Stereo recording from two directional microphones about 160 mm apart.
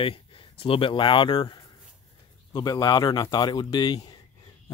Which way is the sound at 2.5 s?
25° left (ahead or behind).